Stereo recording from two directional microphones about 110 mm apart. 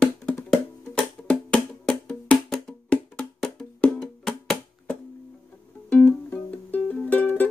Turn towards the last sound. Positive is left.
turn(degrees=15)  # may be behind; listen again after turning